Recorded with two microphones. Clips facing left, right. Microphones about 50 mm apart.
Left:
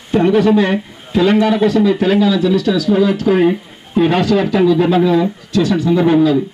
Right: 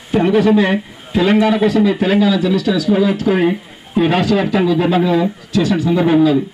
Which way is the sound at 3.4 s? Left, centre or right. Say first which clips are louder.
Left 2 dB; centre.